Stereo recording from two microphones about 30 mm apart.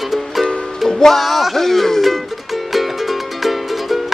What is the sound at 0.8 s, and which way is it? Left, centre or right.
Music, centre.